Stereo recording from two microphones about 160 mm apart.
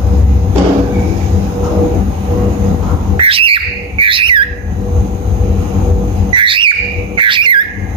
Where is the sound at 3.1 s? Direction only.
35° right (ahead or behind).